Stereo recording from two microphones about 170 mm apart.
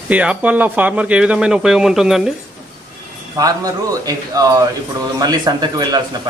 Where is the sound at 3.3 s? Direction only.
20° right (ahead or behind).